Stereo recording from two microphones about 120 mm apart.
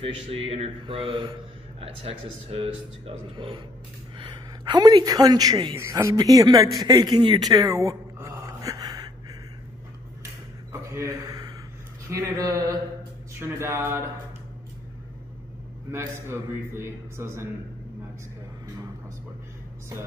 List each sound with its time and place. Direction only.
0.3 s a man's voice: 55° right (ahead or behind); by 5.8 s 35° right (ahead or behind)
5.8 s speech: 25° right (ahead or behind)
6.8 s a sound: 35° right (ahead or behind)
10.7 s a sound: 25° right (ahead or behind)
12.1 s a man's voice: 25° right (ahead or behind)
15.9 s a man's voice: 20° right (ahead or behind)